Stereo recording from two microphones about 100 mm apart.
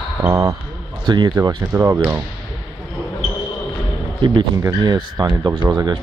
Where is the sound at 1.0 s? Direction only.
45° right (ahead or behind).